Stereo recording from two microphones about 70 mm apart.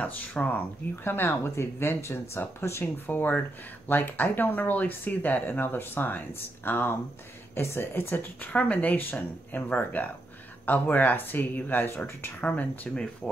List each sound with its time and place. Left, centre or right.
0.0 s speech: left